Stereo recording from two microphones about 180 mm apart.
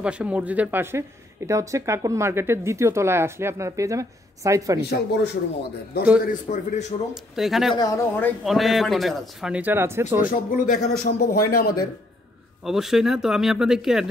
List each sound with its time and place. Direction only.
0.0 s speech: 5° right (ahead or behind)
4.8 s speech: 65° left (ahead or behind)
6.2 s a man's voice: 45° left (ahead or behind)
7.3 s speech: centre (ahead or behind)
7.7 s speech: 20° left (ahead or behind)
8.5 s speech: centre (ahead or behind)
10.5 s a man's voice: 50° left (ahead or behind)
11.1 s speech: 60° left (ahead or behind)
12.6 s speech: centre (ahead or behind)